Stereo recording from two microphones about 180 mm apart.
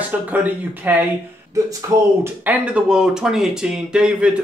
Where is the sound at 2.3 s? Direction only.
10° right (ahead or behind).